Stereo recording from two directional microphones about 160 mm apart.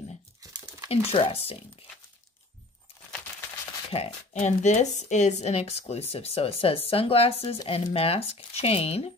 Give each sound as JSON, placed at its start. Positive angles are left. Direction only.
{"t": 0.4, "sound": "crumpling", "side_deg": -20}
{"t": 0.8, "sound": "a woman's voice", "side_deg": 40}
{"t": 3.9, "sound": "a woman's voice", "side_deg": 40}